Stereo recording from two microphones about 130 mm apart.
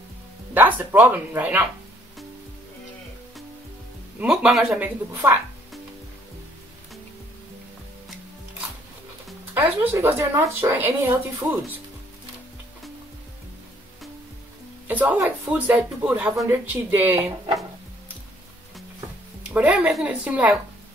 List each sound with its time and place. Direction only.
0.6 s speech: 15° right (ahead or behind)
4.2 s speech: 5° right (ahead or behind)
4.7 s speech: 15° right (ahead or behind)
9.5 s speech: 15° right (ahead or behind)
14.9 s speech: 15° right (ahead or behind)
19.5 s speech: 10° right (ahead or behind)